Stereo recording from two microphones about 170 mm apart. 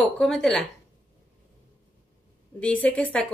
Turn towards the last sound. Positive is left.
turn(degrees=10)  # may be behind; listen again after turning